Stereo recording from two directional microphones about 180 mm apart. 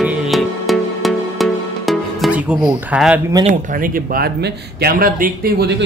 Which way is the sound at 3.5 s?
50° right (ahead or behind).